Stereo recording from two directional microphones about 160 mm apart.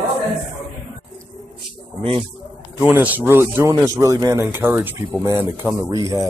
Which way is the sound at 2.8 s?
10° right (ahead or behind).